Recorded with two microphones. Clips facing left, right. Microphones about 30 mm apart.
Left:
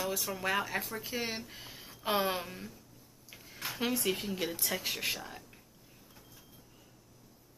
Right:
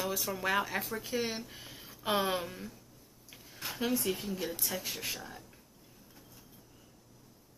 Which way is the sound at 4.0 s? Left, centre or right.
Left.